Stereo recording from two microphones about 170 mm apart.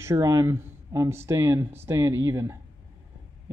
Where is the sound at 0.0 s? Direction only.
20° right (ahead or behind).